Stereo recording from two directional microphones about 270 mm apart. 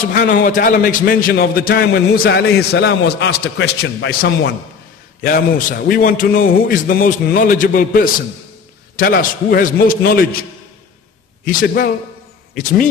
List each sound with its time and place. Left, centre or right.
0.0 s a man's voice: left
11.4 s a man's voice: left